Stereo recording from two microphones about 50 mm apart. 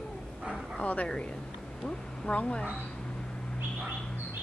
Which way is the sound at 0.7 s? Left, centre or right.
Left.